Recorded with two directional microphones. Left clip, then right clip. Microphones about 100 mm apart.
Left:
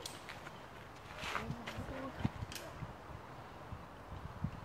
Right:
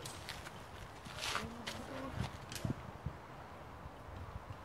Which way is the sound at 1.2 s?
25° right (ahead or behind).